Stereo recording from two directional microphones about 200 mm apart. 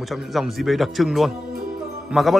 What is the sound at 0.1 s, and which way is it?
A man's voice, centre (ahead or behind).